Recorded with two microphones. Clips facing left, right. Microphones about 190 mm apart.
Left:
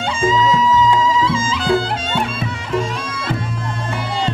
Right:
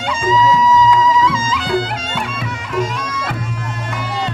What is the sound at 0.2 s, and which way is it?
Music, 30° left (ahead or behind).